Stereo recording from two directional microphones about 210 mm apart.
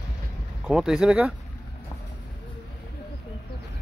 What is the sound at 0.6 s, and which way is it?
Speech, centre (ahead or behind).